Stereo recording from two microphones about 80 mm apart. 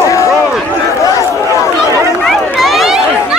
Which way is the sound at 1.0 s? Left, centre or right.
Left.